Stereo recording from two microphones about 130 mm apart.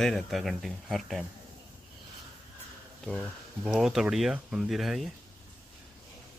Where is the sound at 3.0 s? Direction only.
Centre (ahead or behind).